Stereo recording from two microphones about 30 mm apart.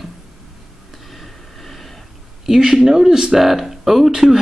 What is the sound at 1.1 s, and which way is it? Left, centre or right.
Train, centre.